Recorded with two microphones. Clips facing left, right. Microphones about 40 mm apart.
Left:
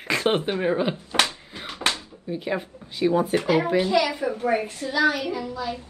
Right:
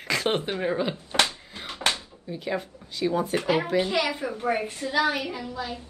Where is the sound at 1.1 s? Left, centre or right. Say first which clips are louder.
Left 1 dB; centre.